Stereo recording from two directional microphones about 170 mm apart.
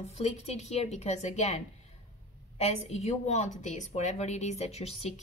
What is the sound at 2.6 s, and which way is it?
Speech, 40° left (ahead or behind).